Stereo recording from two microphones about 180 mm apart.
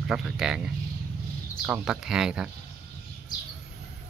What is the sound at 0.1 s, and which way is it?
Speech, 5° right (ahead or behind).